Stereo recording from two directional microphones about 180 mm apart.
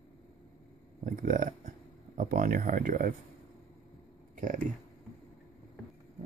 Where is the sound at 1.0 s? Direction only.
45° right (ahead or behind).